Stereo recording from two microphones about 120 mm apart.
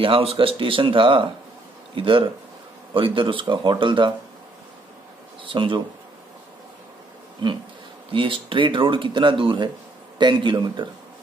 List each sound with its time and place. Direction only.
0.0 s speech: 50° right (ahead or behind)
5.4 s speech: 45° right (ahead or behind)
8.1 s speech: 45° right (ahead or behind)